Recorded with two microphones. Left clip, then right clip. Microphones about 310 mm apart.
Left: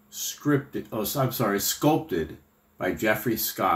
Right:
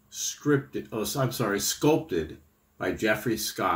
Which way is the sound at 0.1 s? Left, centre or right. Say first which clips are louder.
Even; centre.